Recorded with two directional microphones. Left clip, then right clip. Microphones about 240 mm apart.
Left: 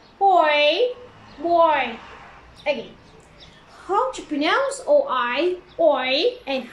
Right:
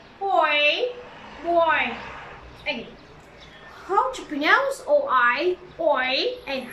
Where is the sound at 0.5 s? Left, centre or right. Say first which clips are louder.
Left 3 dB; left.